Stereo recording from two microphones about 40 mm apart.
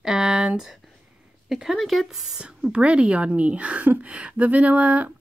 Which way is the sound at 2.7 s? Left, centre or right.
Right.